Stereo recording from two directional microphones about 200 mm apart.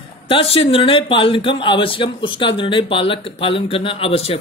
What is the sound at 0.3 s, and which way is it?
Speech, 30° left (ahead or behind).